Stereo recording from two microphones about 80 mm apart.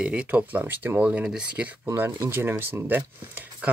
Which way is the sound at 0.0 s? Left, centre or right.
Centre.